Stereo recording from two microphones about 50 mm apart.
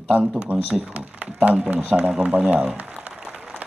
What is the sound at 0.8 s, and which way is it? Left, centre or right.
Speech, right.